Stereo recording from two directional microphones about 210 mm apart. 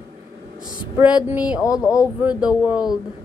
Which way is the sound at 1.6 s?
15° left (ahead or behind).